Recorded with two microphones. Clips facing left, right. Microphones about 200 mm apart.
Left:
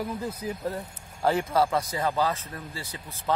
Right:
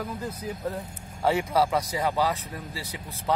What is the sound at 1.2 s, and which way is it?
Speech, 5° right (ahead or behind).